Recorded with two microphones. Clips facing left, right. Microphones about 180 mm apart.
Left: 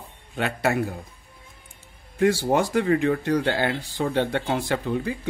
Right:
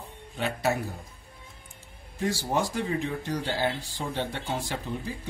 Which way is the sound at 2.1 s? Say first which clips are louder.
Left 7 dB; 60° left (ahead or behind).